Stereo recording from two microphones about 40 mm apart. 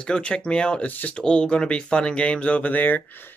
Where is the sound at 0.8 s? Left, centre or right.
Left.